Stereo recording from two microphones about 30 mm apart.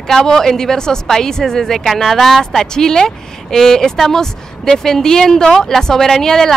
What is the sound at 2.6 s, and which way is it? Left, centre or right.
A woman's voice, left.